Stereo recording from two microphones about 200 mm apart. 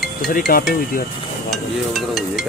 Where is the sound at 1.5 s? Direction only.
Centre (ahead or behind).